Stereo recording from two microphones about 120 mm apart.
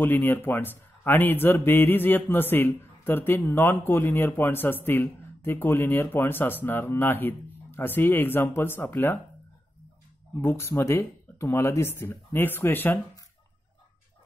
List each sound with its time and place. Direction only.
0.0 s a man's voice: 15° left (ahead or behind)
10.4 s speech: 20° left (ahead or behind)